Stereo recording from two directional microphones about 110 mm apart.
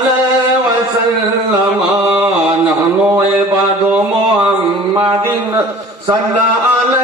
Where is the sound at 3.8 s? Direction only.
15° right (ahead or behind).